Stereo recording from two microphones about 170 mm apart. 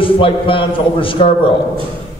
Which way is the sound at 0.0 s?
30° left (ahead or behind).